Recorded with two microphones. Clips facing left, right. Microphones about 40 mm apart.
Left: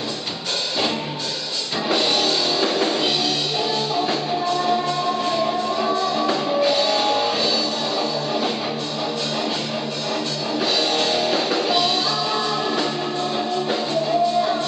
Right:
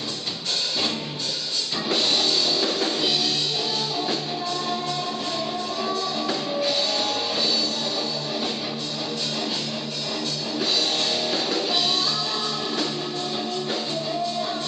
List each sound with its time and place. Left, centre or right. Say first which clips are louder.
1.9 s music: left 3 dB; centre
10.6 s music: left 4 dB; centre